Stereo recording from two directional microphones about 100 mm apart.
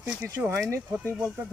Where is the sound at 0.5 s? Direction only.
30° right (ahead or behind).